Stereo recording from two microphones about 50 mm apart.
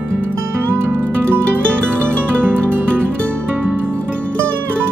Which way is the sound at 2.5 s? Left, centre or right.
Right.